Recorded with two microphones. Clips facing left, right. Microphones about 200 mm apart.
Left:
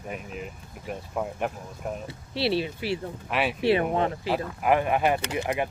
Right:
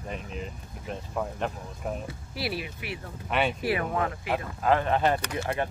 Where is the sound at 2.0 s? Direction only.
30° left (ahead or behind).